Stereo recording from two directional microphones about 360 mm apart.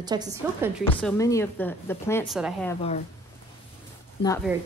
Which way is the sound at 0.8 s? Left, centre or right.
Centre.